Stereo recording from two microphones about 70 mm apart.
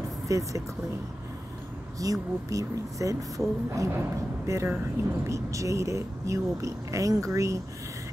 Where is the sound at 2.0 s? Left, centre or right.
Right.